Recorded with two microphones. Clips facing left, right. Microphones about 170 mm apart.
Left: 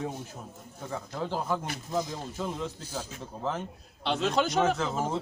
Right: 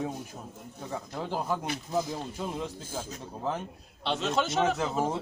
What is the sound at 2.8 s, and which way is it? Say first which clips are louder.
Speech: right 1 dB; 50° right (ahead or behind).